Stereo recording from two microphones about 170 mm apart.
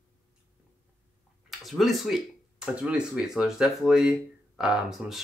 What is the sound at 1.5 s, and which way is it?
Speech, centre (ahead or behind).